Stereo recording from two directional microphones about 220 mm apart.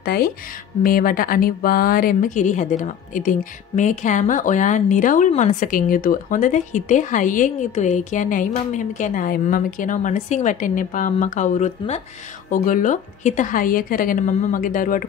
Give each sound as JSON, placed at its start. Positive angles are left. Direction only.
{"t": 0.0, "sound": "speech", "side_deg": 45}